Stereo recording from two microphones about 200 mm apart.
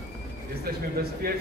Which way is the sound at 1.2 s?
50° right (ahead or behind).